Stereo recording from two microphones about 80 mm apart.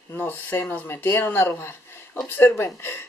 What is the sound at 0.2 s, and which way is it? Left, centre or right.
A woman's voice, left.